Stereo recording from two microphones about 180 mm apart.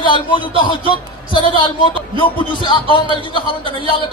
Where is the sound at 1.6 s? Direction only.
30° left (ahead or behind).